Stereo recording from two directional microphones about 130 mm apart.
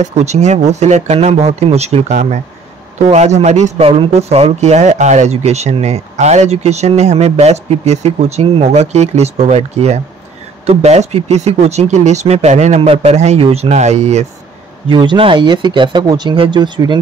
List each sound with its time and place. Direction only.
0.0 s speech: 60° right (ahead or behind)
14.9 s speech: 40° right (ahead or behind)